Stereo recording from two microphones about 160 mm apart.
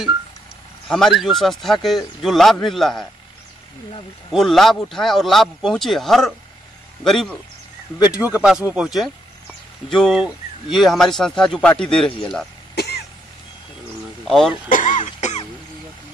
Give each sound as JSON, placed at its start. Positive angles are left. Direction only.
{"t": 0.8, "sound": "speech", "side_deg": 0}
{"t": 4.3, "sound": "speech", "side_deg": 0}
{"t": 8.1, "sound": "speech", "side_deg": -10}
{"t": 12.7, "sound": "cough", "side_deg": 90}
{"t": 14.2, "sound": "speech", "side_deg": 0}
{"t": 14.7, "sound": "cough", "side_deg": 50}